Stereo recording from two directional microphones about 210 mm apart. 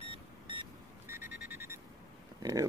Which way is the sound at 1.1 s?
10° right (ahead or behind).